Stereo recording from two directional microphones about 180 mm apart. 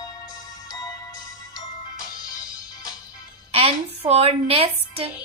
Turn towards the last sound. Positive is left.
turn(degrees=-35)  # may be behind; listen again after turning